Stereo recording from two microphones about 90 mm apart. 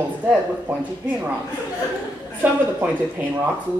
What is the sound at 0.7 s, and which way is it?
Speech, 25° right (ahead or behind).